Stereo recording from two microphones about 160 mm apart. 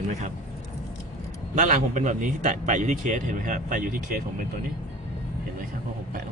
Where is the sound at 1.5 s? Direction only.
50° right (ahead or behind).